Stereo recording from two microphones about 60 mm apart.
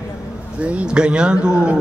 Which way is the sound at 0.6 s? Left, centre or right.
Centre.